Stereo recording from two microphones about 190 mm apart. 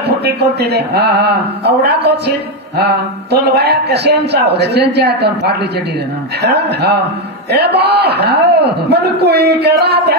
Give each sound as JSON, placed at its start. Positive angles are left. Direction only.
{"t": 0.2, "sound": "a man's voice", "side_deg": -60}